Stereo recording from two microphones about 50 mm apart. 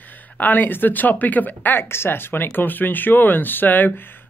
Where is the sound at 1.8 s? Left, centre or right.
Left.